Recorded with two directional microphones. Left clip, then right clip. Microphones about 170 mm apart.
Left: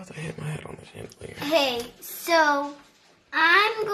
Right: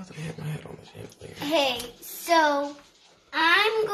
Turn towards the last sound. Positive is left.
turn(degrees=20)  # may be behind; listen again after turning